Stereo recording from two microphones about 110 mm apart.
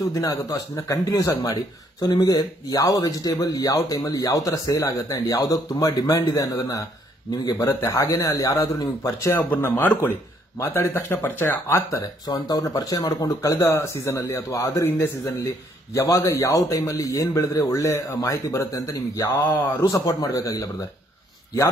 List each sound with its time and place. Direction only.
0.0 s a man's voice: 30° left (ahead or behind)
12.4 s a man's voice: 35° left (ahead or behind)